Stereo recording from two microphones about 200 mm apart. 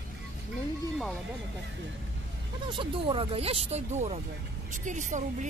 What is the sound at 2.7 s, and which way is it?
Speech, 25° right (ahead or behind).